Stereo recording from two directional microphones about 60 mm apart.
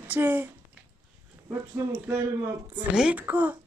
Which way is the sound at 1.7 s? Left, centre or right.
Right.